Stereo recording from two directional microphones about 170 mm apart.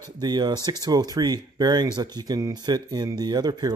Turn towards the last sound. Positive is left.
turn(degrees=-25)  # may be behind; listen again after turning